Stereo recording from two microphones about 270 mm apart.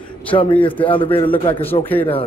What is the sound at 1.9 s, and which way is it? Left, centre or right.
Speech, centre.